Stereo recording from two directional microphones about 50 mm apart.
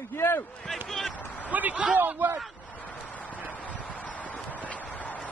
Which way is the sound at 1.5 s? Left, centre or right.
Right.